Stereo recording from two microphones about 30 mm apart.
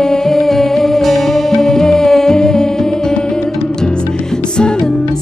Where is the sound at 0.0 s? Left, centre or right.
Centre.